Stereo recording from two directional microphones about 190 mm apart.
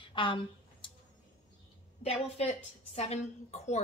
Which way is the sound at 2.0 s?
35° left (ahead or behind).